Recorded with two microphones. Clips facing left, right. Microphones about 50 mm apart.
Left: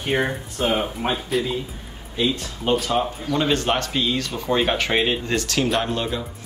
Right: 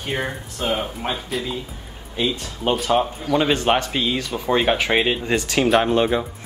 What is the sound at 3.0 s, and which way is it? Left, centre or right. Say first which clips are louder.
Speech: right 3 dB; centre.